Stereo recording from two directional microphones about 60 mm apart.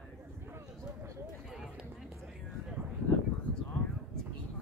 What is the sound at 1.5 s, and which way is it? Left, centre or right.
Run, centre.